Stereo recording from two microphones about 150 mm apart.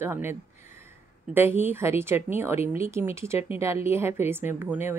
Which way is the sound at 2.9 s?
15° right (ahead or behind).